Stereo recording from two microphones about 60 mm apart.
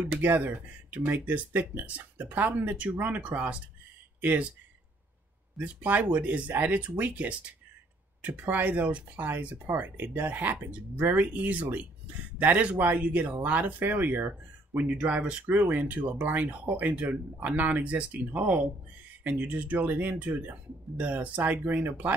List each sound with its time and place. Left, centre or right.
0.0 s speech: right
5.6 s speech: right
14.8 s speech: right